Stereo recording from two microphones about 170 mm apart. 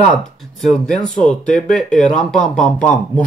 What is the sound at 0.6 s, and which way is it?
Speech, centre (ahead or behind).